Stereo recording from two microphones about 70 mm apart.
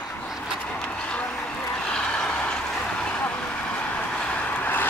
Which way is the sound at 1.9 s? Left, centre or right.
Centre.